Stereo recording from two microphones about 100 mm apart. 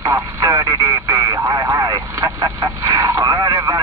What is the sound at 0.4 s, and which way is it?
Radio, 30° right (ahead or behind).